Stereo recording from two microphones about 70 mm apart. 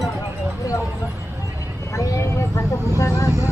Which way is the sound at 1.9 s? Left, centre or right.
Left.